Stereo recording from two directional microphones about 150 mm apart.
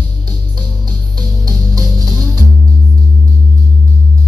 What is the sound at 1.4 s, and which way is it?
Music, 25° right (ahead or behind).